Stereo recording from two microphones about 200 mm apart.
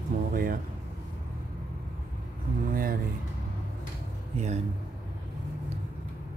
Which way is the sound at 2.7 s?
45° right (ahead or behind).